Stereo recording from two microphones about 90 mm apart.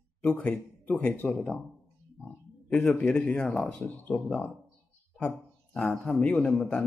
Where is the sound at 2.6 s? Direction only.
15° left (ahead or behind).